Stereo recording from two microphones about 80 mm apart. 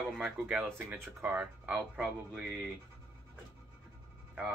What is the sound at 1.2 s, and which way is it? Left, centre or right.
Speech, centre.